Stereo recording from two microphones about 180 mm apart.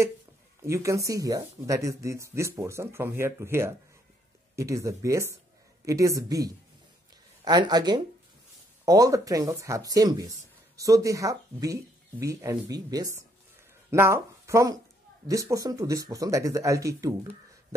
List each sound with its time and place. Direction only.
0.6 s speech: 15° right (ahead or behind)